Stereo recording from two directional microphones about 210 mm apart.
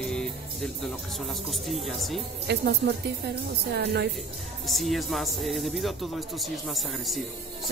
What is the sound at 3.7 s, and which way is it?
Speech, 50° right (ahead or behind).